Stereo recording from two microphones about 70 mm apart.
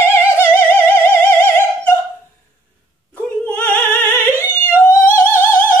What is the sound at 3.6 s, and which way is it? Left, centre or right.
Opera, left.